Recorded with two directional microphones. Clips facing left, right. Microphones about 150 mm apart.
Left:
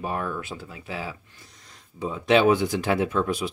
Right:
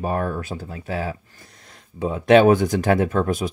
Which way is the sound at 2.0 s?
55° right (ahead or behind).